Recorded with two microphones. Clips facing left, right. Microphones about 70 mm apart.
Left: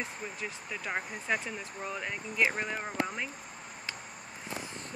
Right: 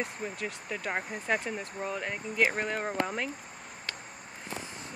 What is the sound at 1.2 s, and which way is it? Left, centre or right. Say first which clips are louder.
Speech: right 4 dB; right.